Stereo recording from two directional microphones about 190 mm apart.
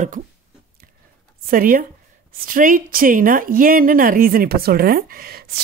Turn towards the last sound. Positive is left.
turn(degrees=-50)  # may be behind; listen again after turning